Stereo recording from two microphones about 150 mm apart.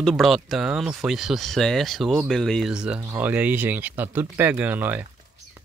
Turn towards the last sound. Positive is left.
turn(degrees=-10)  # may be behind; listen again after turning